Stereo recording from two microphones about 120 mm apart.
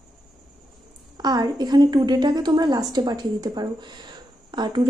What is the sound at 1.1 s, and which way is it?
A woman's voice, 35° right (ahead or behind).